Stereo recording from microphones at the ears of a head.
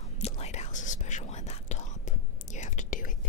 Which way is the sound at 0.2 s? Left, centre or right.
Left.